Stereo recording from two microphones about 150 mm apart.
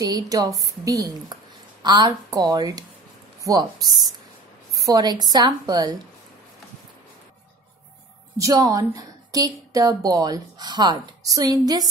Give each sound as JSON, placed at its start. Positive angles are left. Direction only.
{"t": 0.0, "sound": "a woman's voice", "side_deg": -25}
{"t": 8.4, "sound": "a woman's voice", "side_deg": -25}